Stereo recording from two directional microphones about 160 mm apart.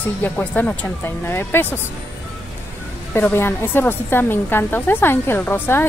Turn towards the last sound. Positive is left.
turn(degrees=15)  # may be behind; listen again after turning